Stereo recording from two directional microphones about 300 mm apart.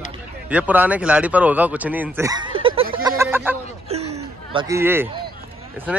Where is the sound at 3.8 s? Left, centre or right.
Right.